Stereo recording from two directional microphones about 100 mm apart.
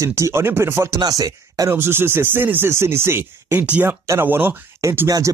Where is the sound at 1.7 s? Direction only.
25° right (ahead or behind).